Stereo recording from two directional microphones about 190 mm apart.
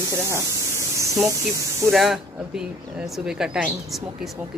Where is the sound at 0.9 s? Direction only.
15° right (ahead or behind).